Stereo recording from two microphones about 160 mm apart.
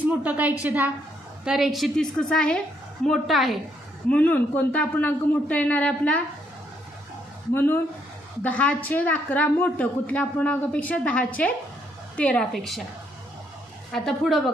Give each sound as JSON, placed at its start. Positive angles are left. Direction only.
{"t": 0.0, "sound": "a woman's voice", "side_deg": -10}
{"t": 7.5, "sound": "a woman's voice", "side_deg": 15}
{"t": 13.9, "sound": "a woman's voice", "side_deg": 0}